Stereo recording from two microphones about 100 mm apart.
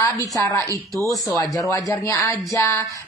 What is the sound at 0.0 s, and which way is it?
Speech, 30° left (ahead or behind).